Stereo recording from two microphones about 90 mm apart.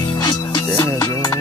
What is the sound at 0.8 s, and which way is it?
Music, 35° left (ahead or behind).